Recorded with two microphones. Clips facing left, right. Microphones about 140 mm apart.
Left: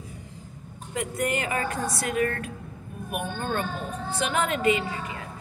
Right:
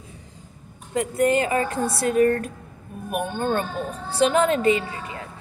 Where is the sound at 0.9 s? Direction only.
30° right (ahead or behind).